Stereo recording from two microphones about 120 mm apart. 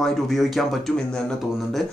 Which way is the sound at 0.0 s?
Centre (ahead or behind).